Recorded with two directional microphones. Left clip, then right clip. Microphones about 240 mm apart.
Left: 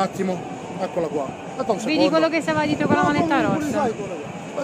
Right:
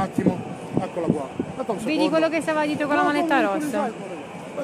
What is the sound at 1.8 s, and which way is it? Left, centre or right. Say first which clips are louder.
Speech: left 2 dB; centre.